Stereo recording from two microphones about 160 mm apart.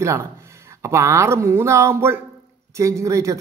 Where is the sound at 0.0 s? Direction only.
20° right (ahead or behind).